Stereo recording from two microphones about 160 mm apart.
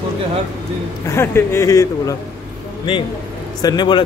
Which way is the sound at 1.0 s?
15° left (ahead or behind).